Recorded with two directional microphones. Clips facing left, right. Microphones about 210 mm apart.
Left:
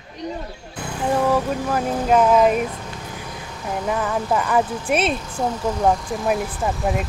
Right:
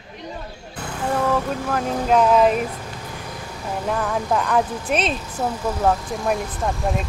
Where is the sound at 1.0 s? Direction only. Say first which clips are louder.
Left 2 dB; 15° left (ahead or behind).